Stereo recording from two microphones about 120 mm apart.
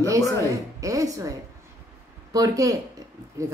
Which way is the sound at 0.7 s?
30° right (ahead or behind).